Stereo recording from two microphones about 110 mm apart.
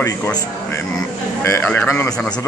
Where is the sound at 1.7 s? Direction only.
15° left (ahead or behind).